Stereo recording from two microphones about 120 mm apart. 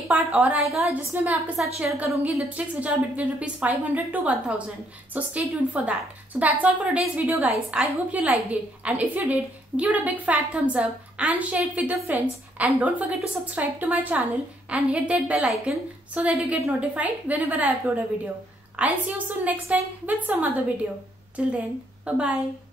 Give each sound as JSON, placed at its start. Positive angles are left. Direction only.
{"t": 0.1, "sound": "a woman's voice", "side_deg": -10}
{"t": 0.7, "sound": "a woman's voice", "side_deg": 0}
{"t": 1.1, "sound": "a woman's voice", "side_deg": -10}